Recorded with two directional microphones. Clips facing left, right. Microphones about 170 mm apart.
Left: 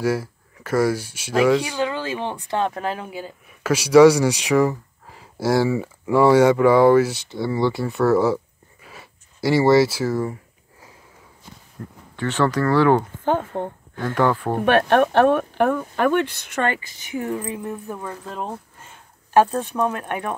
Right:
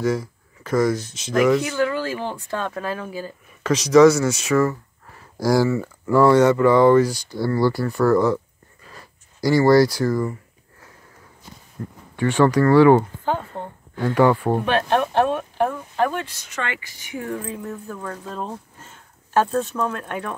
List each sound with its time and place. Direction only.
0.0 s speech: 5° left (ahead or behind)
8.8 s a sound: 5° left (ahead or behind)
11.8 s speech: 5° right (ahead or behind)
13.5 s speech: 20° left (ahead or behind)
13.9 s speech: 10° right (ahead or behind)
14.6 s speech: 55° left (ahead or behind)
16.8 s speech: 25° left (ahead or behind)